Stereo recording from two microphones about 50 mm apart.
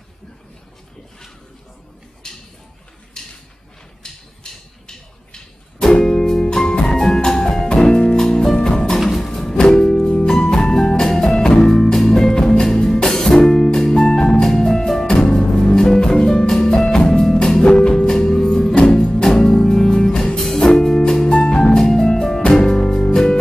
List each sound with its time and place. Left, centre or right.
2.2 s a sound: centre
6.7 s music: centre
9.0 s music: centre
18.9 s music: centre